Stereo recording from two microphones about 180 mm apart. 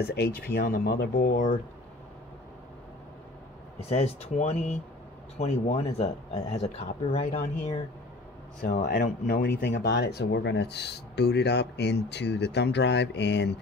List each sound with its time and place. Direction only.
0.0 s speech: 65° left (ahead or behind); by 1.5 s 45° left (ahead or behind)
3.9 s speech: 35° left (ahead or behind)
8.6 s speech: 50° left (ahead or behind); by 13.6 s 75° left (ahead or behind)